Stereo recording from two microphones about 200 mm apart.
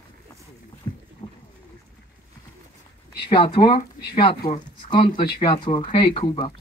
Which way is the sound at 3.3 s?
25° left (ahead or behind).